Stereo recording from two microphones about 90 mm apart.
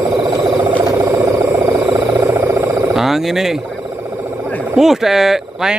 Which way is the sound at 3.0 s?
5° right (ahead or behind).